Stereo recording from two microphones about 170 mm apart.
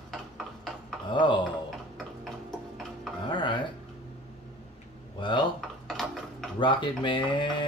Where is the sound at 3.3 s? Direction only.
30° left (ahead or behind).